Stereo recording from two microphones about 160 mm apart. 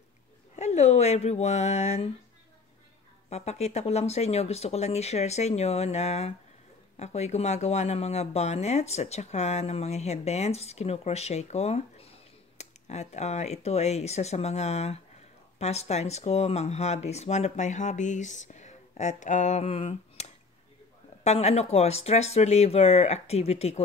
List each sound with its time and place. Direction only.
0.6 s speech: 40° left (ahead or behind)
3.3 s speech: 40° left (ahead or behind)